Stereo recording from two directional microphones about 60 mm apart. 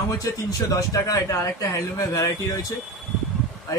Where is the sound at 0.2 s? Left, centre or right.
Left.